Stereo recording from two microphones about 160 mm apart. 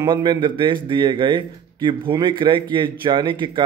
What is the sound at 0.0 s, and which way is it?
A man's voice, 25° right (ahead or behind).